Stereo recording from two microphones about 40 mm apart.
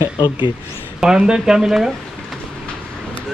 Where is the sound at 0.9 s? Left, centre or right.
Centre.